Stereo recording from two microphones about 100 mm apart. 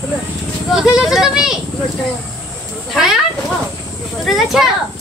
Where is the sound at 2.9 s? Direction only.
5° right (ahead or behind).